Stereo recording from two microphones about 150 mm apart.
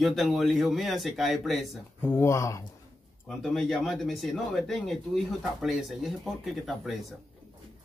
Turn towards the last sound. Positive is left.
turn(degrees=0)  # may be behind; listen again after turning